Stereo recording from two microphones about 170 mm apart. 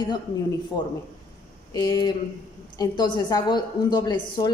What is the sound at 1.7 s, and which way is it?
A woman's voice, 25° left (ahead or behind).